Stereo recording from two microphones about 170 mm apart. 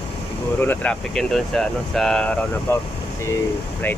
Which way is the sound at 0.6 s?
10° left (ahead or behind).